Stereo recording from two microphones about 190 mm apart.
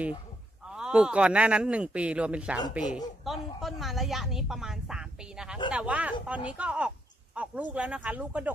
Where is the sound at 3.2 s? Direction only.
Centre (ahead or behind).